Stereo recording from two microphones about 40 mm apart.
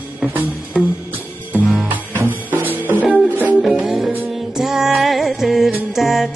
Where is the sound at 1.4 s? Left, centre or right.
Right.